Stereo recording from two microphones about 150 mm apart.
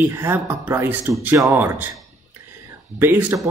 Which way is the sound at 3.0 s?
15° right (ahead or behind).